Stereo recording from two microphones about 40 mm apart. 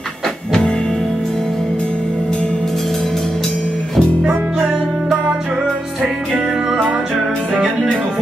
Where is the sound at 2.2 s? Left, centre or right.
Centre.